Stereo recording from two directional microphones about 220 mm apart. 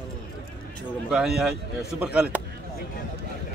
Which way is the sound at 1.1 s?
Centre (ahead or behind).